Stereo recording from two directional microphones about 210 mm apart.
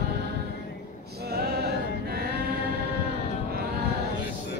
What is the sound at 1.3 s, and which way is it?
Music, 45° right (ahead or behind).